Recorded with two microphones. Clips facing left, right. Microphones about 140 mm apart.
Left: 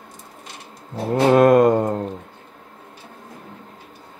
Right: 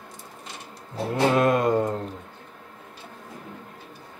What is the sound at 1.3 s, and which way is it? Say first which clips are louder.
Mantra: left 9 dB; 50° left (ahead or behind).